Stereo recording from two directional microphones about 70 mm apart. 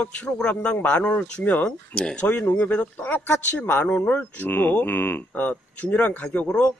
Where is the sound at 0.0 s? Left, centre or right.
Centre.